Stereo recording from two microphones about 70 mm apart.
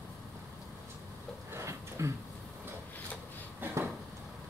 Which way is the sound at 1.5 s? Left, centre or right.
Right.